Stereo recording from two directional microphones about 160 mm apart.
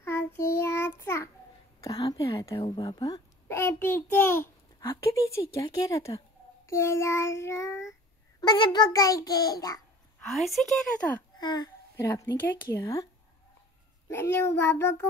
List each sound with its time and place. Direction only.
0.0 s child singing: 15° left (ahead or behind)
1.8 s speech: 25° left (ahead or behind)
2.5 s speech: 35° left (ahead or behind)
2.8 s a child's voice: 20° left (ahead or behind)
6.7 s child singing: 15° left (ahead or behind)
8.4 s speech: 25° left (ahead or behind)
10.2 s a woman's voice: centre (ahead or behind)
11.3 s babbling: 25° left (ahead or behind)
12.3 s child singing: 15° left (ahead or behind)
14.0 s a child's voice: 15° left (ahead or behind)
14.6 s child singing: 15° left (ahead or behind)